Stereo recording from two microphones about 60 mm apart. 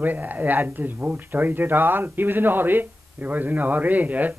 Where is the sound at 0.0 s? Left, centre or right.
Right.